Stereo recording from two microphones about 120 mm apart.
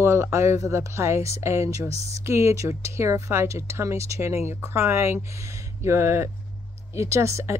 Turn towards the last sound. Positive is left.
turn(degrees=-25)  # may be behind; listen again after turning